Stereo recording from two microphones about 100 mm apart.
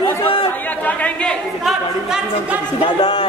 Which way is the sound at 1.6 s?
5° right (ahead or behind).